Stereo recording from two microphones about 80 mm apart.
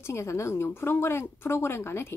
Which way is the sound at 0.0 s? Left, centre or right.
Left.